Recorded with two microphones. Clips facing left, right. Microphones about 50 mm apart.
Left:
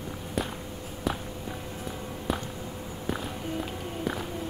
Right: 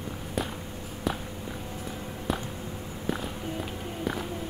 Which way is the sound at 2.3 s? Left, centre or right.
Centre.